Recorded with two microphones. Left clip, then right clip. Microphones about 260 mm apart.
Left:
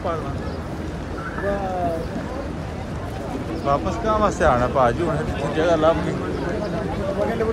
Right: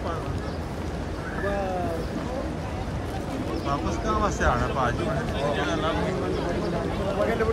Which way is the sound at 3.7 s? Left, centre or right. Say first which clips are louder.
Left 8 dB; centre.